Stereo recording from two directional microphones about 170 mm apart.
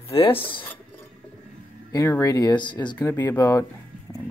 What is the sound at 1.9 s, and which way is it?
Speech, 20° left (ahead or behind).